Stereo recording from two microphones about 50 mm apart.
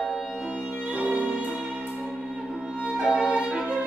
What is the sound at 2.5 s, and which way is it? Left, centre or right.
Violin, centre.